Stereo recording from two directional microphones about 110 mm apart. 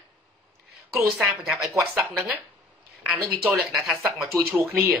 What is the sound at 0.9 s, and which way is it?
Speech, centre (ahead or behind).